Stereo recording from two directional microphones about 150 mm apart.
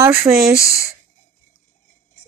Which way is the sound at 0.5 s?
20° left (ahead or behind).